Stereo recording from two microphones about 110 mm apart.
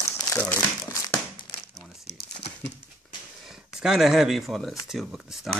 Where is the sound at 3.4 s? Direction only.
5° right (ahead or behind).